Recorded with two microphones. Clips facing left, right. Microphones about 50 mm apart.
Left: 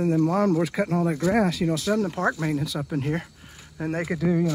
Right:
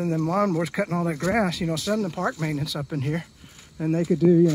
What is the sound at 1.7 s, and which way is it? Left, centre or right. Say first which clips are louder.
Speech: left 1 dB; centre.